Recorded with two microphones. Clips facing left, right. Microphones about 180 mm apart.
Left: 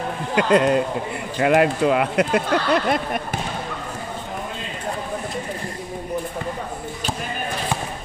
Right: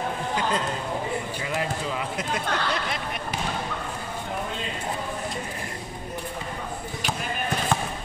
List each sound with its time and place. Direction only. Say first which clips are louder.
0.4 s speech: left 14 dB; 70° left (ahead or behind)